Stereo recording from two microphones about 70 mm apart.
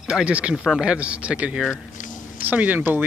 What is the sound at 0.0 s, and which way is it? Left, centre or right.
Speech, centre.